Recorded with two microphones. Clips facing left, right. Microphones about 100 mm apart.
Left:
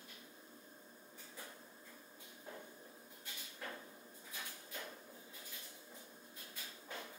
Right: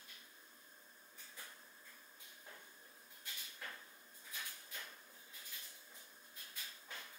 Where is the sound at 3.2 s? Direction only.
20° left (ahead or behind).